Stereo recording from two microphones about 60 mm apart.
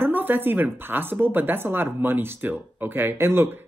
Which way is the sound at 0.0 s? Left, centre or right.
Right.